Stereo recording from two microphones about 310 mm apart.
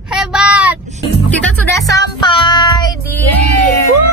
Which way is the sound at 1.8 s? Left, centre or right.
Centre.